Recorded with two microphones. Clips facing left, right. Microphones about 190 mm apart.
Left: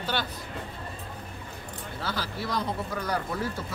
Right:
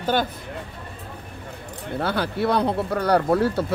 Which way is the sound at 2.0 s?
60° right (ahead or behind).